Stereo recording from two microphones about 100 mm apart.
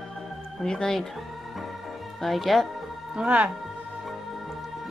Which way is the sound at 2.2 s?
Centre (ahead or behind).